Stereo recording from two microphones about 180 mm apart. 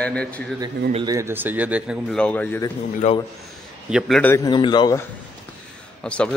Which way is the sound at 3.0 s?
40° left (ahead or behind).